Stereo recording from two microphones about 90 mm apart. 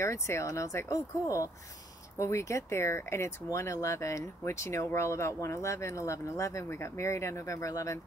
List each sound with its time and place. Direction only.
0.0 s speech: 35° left (ahead or behind)